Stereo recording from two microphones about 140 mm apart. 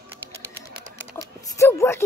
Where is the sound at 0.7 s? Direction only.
90° right.